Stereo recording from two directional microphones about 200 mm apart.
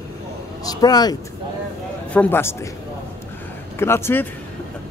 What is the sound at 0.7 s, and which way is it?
Speech, 20° left (ahead or behind).